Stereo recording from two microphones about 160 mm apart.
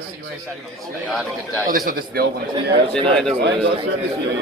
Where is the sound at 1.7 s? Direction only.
65° right (ahead or behind).